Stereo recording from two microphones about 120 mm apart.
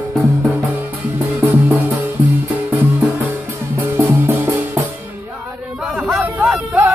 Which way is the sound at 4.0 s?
20° right (ahead or behind).